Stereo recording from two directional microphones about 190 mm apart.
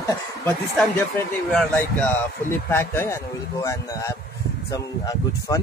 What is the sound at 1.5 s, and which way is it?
Speech, 5° left (ahead or behind).